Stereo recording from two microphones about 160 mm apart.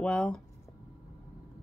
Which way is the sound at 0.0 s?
5° left (ahead or behind).